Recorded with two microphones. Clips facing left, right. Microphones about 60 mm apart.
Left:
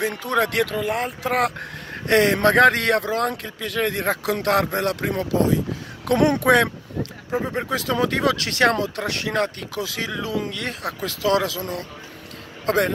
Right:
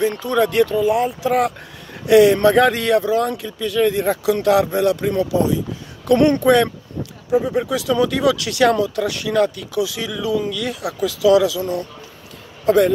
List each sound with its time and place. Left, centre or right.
0.0 s speech: left
7.2 s speech: left
12.6 s speech: left